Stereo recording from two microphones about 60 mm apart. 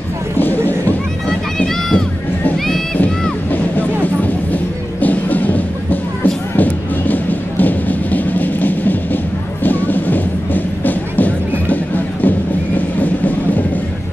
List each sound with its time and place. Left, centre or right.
0.4 s a sound: left
1.6 s run: centre
3.5 s vehicle: left
5.0 s music: left